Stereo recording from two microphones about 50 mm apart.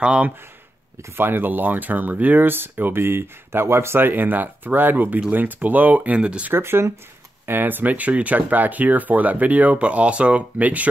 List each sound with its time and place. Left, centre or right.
0.0 s speech: right
1.1 s speech: right
6.5 s speech: right